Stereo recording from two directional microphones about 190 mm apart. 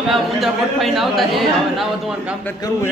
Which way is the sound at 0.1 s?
Centre (ahead or behind).